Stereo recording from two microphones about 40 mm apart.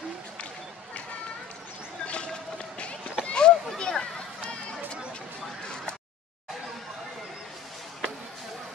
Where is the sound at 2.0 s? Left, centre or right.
Left.